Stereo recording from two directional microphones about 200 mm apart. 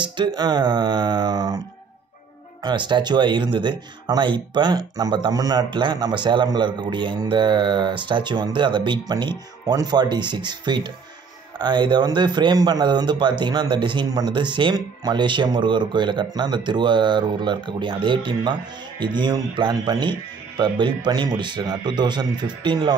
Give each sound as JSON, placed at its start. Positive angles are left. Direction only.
{"t": 0.0, "sound": "speech", "side_deg": -20}
{"t": 2.6, "sound": "speech", "side_deg": -25}